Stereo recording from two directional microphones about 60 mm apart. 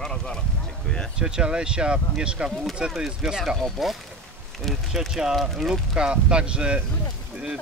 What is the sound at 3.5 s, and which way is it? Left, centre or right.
Speech, centre.